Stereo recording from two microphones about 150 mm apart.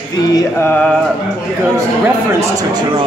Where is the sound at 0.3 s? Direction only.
25° left (ahead or behind).